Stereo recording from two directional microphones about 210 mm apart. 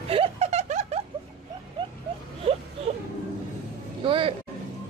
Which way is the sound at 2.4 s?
25° right (ahead or behind).